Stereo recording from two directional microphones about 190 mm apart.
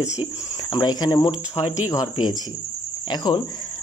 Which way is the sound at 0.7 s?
20° left (ahead or behind).